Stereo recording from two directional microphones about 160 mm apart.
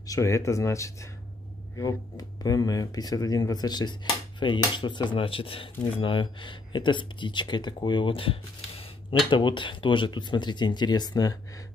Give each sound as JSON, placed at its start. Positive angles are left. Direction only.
{"t": 0.0, "sound": "speech", "side_deg": 20}